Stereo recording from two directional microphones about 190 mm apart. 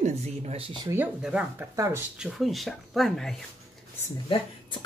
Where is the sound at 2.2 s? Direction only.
Centre (ahead or behind).